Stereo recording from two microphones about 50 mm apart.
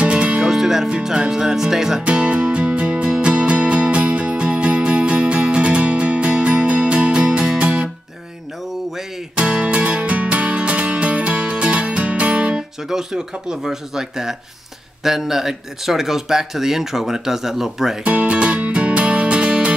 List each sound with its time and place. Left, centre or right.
0.0 s music: right
0.5 s music: centre
0.8 s speech: centre
2.0 s music: right
9.4 s music: right
12.8 s speech: centre
18.0 s music: right